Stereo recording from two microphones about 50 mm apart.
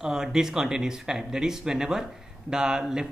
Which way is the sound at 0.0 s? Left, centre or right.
Centre.